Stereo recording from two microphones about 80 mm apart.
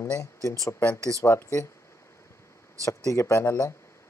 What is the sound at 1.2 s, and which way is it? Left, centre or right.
Speech, left.